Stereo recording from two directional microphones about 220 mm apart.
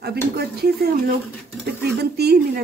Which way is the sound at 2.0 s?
45° right (ahead or behind).